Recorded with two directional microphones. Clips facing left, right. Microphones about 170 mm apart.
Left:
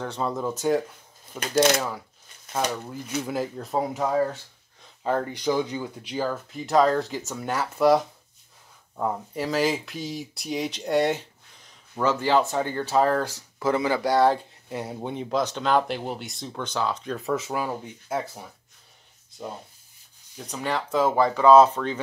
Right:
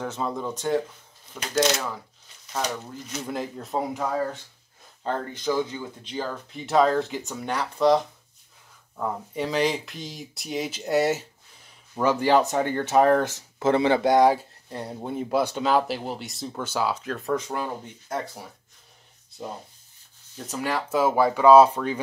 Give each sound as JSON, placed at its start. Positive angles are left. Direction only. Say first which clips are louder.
{"t": 0.0, "sound": "speech", "louder": "left 1 dB", "side_deg": -5}
{"t": 0.5, "sound": "speech", "louder": "left 5 dB", "side_deg": 10}
{"t": 1.5, "sound": "speech", "louder": "left 2 dB", "side_deg": 55}
{"t": 3.3, "sound": "speech", "louder": "left 2 dB", "side_deg": 0}
{"t": 5.0, "sound": "speech", "louder": "left 3 dB", "side_deg": 10}
{"t": 9.3, "sound": "speech", "louder": "right 1 dB", "side_deg": 0}
{"t": 14.7, "sound": "speech", "louder": "left 1 dB", "side_deg": 5}
{"t": 20.3, "sound": "speech", "louder": "right 1 dB", "side_deg": -5}